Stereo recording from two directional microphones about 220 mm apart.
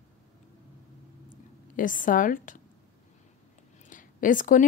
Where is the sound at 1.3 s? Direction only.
40° left (ahead or behind).